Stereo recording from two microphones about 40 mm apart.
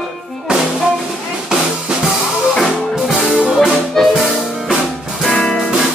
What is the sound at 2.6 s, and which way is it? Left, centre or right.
Music, centre.